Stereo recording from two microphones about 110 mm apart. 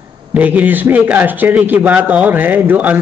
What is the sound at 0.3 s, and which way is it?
A man's voice, 15° right (ahead or behind).